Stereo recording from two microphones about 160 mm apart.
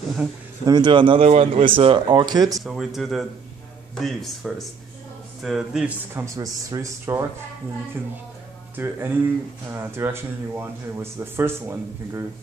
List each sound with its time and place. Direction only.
0.7 s speech: 25° right (ahead or behind)
2.6 s speech: centre (ahead or behind)
6.1 s speech: 20° right (ahead or behind)
8.7 s speech: 10° right (ahead or behind)